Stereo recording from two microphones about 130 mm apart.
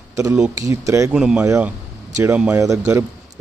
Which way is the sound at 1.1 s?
5° right (ahead or behind).